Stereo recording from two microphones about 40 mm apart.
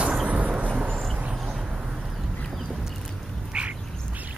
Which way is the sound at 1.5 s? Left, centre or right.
Centre.